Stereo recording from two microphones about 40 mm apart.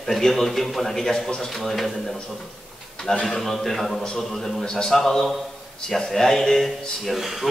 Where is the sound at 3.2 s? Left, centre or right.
Centre.